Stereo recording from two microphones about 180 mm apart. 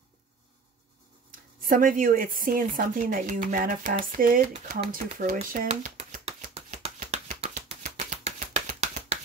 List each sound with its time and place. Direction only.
1.6 s speech: 50° right (ahead or behind)
5.7 s shuffling cards: 45° right (ahead or behind)
6.8 s a sound: 35° right (ahead or behind)